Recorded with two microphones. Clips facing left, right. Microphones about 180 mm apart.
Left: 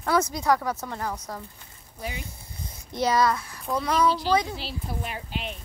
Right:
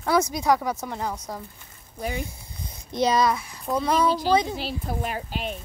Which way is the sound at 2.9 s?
20° right (ahead or behind).